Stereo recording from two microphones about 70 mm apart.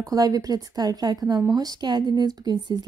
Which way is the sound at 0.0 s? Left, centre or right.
Right.